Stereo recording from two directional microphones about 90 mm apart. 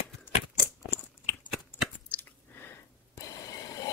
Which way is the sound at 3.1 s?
40° left (ahead or behind).